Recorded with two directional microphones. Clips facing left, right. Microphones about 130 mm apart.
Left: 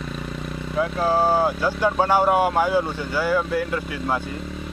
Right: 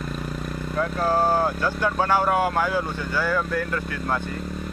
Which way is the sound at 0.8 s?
5° left (ahead or behind).